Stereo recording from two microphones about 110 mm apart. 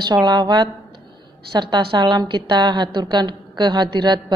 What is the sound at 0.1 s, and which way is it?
A woman's voice, 40° right (ahead or behind).